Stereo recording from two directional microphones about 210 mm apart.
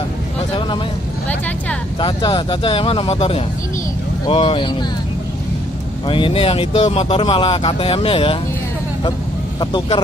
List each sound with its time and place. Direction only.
2.0 s speech: 20° left (ahead or behind)
6.0 s speech: 25° left (ahead or behind)
9.6 s speech: 20° left (ahead or behind)